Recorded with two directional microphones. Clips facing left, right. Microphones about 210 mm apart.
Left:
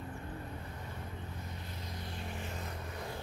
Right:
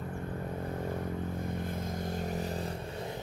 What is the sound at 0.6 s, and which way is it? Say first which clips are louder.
Vehicle: right 11 dB; 50° right (ahead or behind).